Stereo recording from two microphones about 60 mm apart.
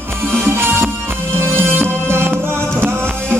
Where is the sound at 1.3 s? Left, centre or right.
Right.